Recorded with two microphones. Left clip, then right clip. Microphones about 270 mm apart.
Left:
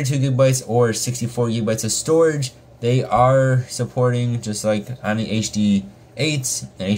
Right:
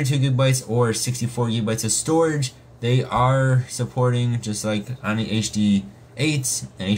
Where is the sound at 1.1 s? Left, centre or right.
Centre.